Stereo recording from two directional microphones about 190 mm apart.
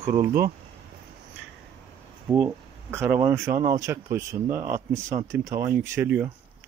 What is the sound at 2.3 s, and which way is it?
Speech, 10° right (ahead or behind).